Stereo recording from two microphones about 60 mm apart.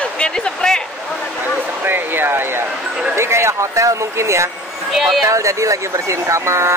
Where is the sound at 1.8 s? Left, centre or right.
Right.